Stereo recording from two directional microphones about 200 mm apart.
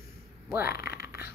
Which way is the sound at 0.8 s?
50° left (ahead or behind).